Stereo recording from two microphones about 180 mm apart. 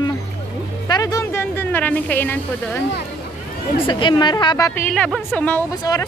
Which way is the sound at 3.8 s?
25° left (ahead or behind).